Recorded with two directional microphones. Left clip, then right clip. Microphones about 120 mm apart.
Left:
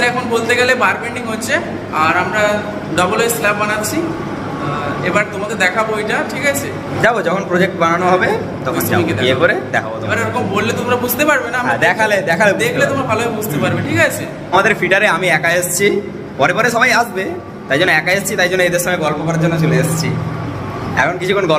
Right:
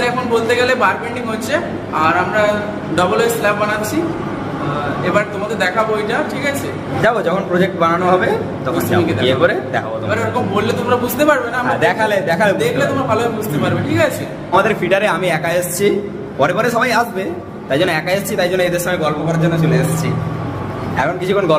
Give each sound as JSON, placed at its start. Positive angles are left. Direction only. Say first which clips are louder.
{"t": 0.0, "sound": "a man's voice", "louder": "left 1 dB", "side_deg": -25}
{"t": 5.0, "sound": "speech", "louder": "left 1 dB", "side_deg": -25}
{"t": 7.0, "sound": "a man's voice", "louder": "left 1 dB", "side_deg": 5}
{"t": 10.1, "sound": "a man's voice", "louder": "left 1 dB", "side_deg": -35}
{"t": 11.6, "sound": "a man's voice", "louder": "left 1 dB", "side_deg": 0}
{"t": 12.5, "sound": "speech", "louder": "left 1 dB", "side_deg": -30}
{"t": 14.5, "sound": "a man's voice", "louder": "left 1 dB", "side_deg": -5}
{"t": 20.9, "sound": "speech", "louder": "left 2 dB", "side_deg": -5}